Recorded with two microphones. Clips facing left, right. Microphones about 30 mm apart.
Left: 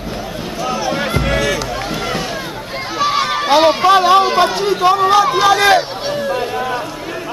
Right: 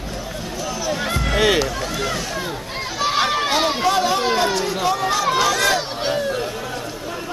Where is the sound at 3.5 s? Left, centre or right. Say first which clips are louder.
Left 8 dB; centre.